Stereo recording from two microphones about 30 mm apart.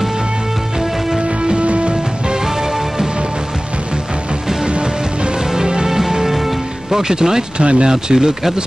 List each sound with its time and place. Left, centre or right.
0.7 s music: right
1.6 s music: right
2.4 s music: centre
4.6 s music: right
5.4 s music: right
6.2 s music: centre
7.5 s speech: right
7.9 s speech: right